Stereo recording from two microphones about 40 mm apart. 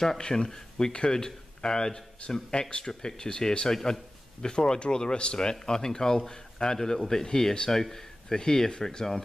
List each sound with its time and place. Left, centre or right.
0.2 s a man's voice: centre